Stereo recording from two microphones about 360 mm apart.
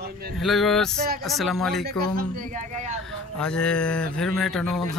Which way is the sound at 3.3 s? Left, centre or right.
Centre.